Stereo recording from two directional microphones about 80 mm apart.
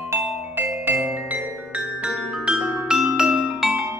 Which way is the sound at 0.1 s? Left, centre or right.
Right.